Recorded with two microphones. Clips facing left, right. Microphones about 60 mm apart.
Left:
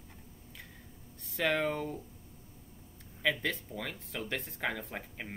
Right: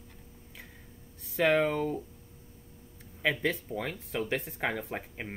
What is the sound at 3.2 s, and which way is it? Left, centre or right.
Speech, right.